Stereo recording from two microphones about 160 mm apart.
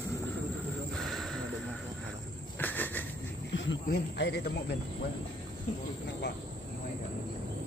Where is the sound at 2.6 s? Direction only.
10° left (ahead or behind).